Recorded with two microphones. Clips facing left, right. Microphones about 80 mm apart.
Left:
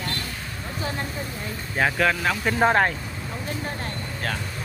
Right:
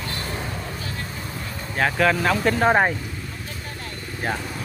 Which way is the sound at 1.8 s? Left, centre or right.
Centre.